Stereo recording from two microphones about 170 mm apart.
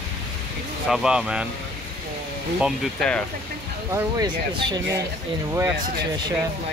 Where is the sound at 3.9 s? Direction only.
20° right (ahead or behind).